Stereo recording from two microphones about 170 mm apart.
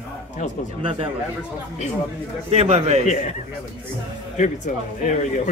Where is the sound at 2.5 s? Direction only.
35° right (ahead or behind).